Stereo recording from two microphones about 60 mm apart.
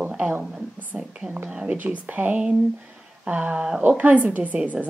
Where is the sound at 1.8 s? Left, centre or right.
Right.